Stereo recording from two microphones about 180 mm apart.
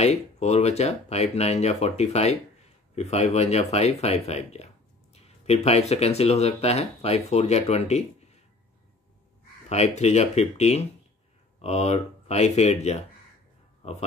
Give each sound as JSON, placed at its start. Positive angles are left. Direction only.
{"t": 0.0, "sound": "speech", "side_deg": 35}
{"t": 9.7, "sound": "speech", "side_deg": 35}